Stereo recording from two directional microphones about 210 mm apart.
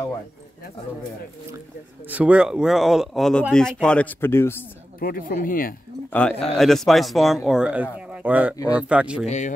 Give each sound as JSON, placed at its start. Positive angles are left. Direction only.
{"t": 2.0, "sound": "speech", "side_deg": -5}
{"t": 5.0, "sound": "speech", "side_deg": 40}
{"t": 6.1, "sound": "speech", "side_deg": 5}